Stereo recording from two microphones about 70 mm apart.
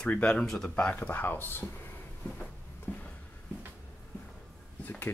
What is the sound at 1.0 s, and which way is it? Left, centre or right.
Speech, left.